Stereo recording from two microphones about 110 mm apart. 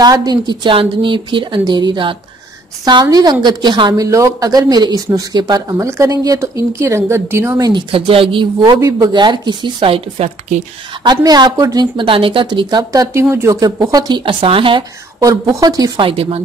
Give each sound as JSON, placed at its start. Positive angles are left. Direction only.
{"t": 0.0, "sound": "a woman's voice", "side_deg": -35}
{"t": 4.0, "sound": "speech", "side_deg": -30}
{"t": 7.9, "sound": "a woman's voice", "side_deg": -55}
{"t": 8.8, "sound": "a woman's voice", "side_deg": -35}
{"t": 11.1, "sound": "speech", "side_deg": -40}
{"t": 12.1, "sound": "speech", "side_deg": -55}
{"t": 13.6, "sound": "a woman's voice", "side_deg": -35}
{"t": 15.1, "sound": "speech", "side_deg": -30}
{"t": 16.0, "sound": "speech", "side_deg": -55}